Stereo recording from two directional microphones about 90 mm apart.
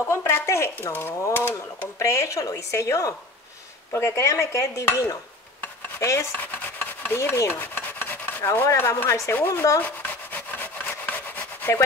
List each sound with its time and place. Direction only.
0.0 s speech: 30° left (ahead or behind)
5.9 s stir: 35° left (ahead or behind)
6.4 s stir: 20° left (ahead or behind)
7.2 s rub: 30° left (ahead or behind)